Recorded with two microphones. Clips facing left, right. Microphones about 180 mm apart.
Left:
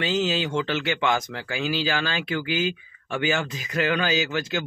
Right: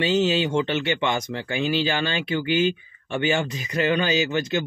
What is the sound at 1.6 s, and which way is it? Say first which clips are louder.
Speech: right 2 dB; 5° left (ahead or behind).